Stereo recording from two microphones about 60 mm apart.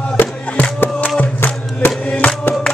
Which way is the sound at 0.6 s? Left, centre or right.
Left.